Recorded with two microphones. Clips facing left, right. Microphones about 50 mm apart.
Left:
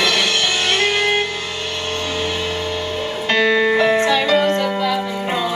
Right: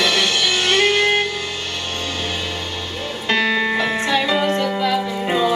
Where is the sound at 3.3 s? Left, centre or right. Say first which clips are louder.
Left 3 dB; centre.